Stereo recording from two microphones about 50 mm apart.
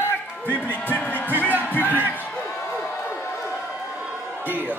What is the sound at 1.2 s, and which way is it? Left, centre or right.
Music, right.